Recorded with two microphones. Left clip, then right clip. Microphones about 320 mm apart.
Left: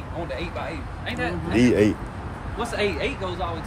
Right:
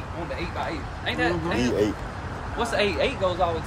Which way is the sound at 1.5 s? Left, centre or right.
Left.